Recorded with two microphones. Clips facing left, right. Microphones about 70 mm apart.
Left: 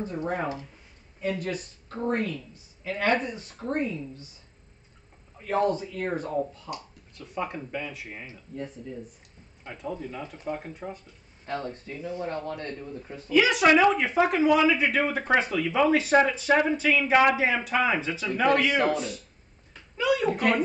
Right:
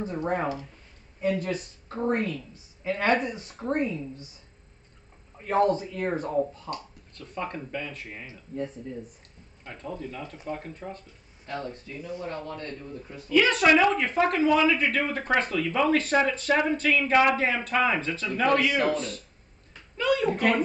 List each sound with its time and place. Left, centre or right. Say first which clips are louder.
0.0 s speech: right 2 dB; right
5.4 s speech: right 2 dB; right
6.7 s speech: right 2 dB; centre
9.7 s speech: left 2 dB; centre
11.4 s a man's voice: left 2 dB; left
13.3 s speech: even; centre
18.7 s a man's voice: left 1 dB; left
18.9 s speech: even; centre